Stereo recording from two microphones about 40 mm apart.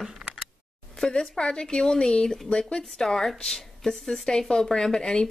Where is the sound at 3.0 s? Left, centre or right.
Centre.